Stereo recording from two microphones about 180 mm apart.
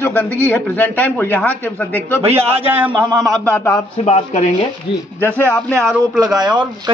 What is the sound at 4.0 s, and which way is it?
Speech, 40° left (ahead or behind).